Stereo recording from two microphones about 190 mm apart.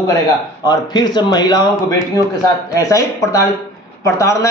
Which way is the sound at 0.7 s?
20° left (ahead or behind).